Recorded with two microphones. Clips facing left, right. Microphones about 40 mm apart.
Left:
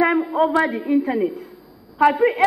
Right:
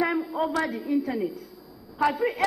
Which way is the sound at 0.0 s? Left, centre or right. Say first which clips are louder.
Left 8 dB; left.